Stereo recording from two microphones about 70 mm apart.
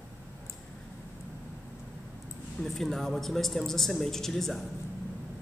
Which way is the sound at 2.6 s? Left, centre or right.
Centre.